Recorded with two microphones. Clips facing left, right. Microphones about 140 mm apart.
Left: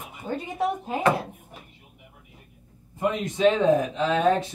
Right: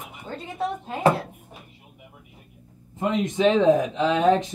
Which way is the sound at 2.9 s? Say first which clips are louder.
Right 2 dB; 20° right (ahead or behind).